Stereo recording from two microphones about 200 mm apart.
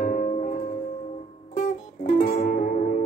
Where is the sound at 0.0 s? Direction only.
40° left (ahead or behind).